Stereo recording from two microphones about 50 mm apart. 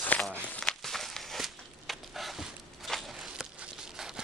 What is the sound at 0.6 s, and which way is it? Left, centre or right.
Walk, centre.